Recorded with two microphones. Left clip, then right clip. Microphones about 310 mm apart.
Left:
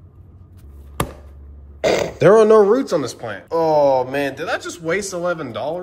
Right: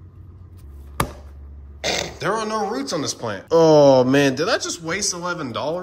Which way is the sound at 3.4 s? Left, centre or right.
Right.